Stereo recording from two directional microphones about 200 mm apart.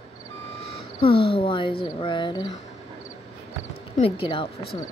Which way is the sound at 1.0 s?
25° left (ahead or behind).